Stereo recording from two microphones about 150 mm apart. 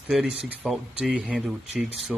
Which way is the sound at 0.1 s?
5° right (ahead or behind).